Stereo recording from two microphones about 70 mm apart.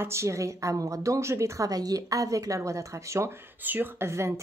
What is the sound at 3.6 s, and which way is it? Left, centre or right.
Speech, right.